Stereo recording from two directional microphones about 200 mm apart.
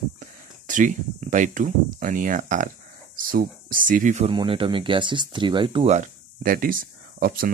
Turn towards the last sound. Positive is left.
turn(degrees=-45)  # may be behind; listen again after turning